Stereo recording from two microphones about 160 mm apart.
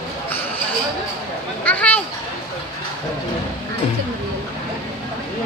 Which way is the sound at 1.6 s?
10° left (ahead or behind).